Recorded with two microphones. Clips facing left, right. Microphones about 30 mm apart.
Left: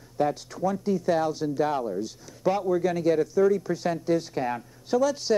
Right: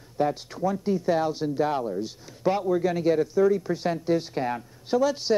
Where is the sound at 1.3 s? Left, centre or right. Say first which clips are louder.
Even; right.